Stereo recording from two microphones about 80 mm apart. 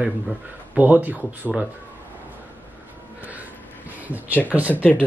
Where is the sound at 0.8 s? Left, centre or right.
Right.